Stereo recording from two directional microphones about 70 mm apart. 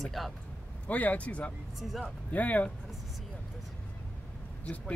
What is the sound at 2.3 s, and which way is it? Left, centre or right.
Speech, left.